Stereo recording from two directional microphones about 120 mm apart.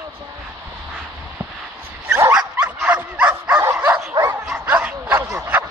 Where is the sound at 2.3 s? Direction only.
10° right (ahead or behind).